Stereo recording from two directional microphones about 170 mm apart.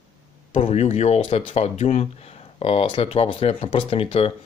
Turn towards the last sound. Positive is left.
turn(degrees=35)  # may be behind; listen again after turning